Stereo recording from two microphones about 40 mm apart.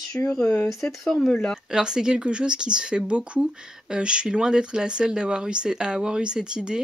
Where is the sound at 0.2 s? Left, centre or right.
Left.